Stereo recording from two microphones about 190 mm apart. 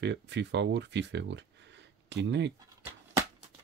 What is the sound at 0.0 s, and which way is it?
Speech, 65° right (ahead or behind).